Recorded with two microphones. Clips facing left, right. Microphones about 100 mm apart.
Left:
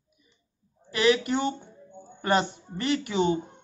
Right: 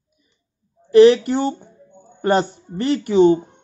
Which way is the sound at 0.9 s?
45° right (ahead or behind).